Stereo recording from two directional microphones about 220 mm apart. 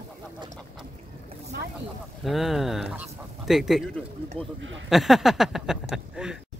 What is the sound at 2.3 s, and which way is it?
Speech, centre (ahead or behind).